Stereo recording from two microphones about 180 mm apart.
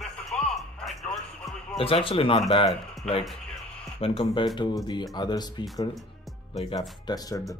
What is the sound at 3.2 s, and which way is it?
Music, centre (ahead or behind).